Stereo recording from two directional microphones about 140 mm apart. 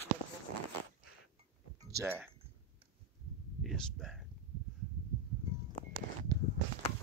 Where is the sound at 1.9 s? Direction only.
20° right (ahead or behind).